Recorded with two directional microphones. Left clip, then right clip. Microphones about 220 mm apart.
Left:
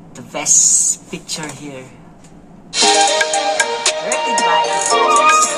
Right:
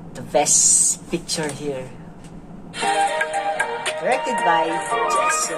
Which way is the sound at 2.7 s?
50° left (ahead or behind).